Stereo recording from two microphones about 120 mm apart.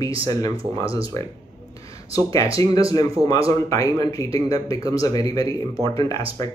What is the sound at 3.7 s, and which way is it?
Speech, 30° left (ahead or behind).